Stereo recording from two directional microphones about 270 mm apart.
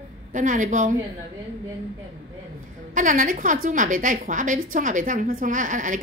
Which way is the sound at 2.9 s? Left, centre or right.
Right.